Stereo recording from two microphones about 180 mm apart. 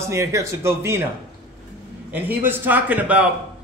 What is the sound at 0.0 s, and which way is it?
Speech, 15° right (ahead or behind).